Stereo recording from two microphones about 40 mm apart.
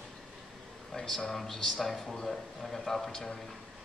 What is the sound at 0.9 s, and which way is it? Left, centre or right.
Speech, centre.